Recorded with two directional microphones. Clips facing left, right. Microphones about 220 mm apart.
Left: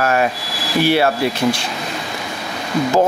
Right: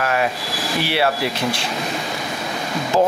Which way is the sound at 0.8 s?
45° left (ahead or behind).